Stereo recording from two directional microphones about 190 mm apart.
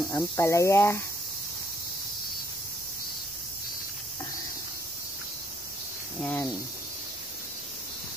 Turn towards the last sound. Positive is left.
turn(degrees=10)  # may be behind; listen again after turning